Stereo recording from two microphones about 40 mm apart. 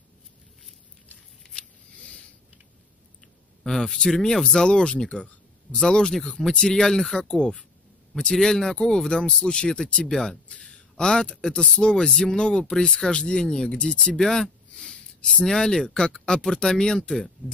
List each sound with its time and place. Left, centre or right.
2.0 s a sound: left
3.6 s speech: centre
10.0 s speech: centre